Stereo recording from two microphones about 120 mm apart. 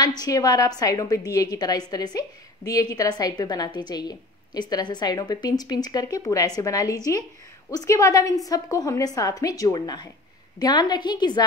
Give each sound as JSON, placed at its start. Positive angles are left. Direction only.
{"t": 0.2, "sound": "a woman's voice", "side_deg": 30}